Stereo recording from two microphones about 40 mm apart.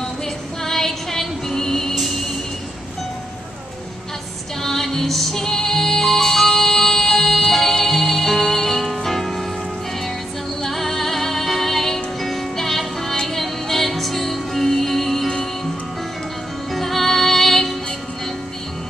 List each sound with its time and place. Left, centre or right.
0.7 s music: centre
4.6 s music: centre
10.6 s music: centre
16.7 s music: centre